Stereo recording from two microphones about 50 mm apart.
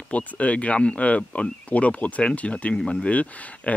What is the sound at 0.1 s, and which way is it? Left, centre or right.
Speech, left.